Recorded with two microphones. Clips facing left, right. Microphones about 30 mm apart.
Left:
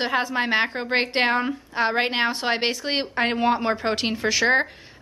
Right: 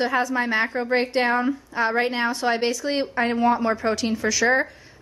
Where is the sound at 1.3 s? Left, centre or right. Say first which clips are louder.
Right 1 dB; left.